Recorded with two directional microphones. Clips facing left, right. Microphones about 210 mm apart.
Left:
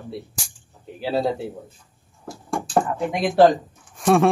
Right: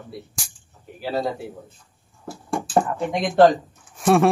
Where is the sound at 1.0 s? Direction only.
25° left (ahead or behind).